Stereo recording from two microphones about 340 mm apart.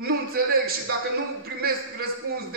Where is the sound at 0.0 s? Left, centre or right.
Right.